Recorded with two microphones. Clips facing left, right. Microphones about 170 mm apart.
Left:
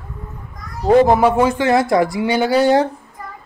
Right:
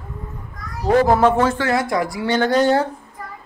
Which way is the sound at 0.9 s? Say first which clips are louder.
Left 3 dB; 20° left (ahead or behind).